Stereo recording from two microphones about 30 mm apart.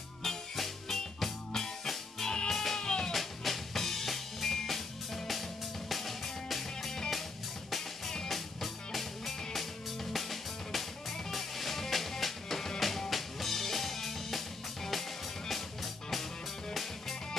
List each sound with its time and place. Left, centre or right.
0.6 s music: centre
2.2 s music: left
2.5 s music: centre
2.8 s music: left
3.1 s drum kit: centre
5.9 s music: centre
8.3 s music: centre